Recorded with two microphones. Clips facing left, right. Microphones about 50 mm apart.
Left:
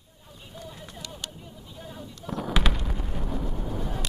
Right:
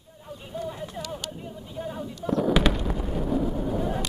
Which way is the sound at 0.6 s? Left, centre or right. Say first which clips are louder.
Right 8 dB; centre.